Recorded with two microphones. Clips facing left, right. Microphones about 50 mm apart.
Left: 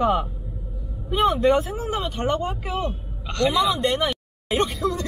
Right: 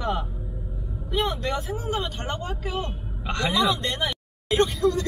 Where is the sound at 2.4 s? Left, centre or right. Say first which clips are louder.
Left 4 dB; left.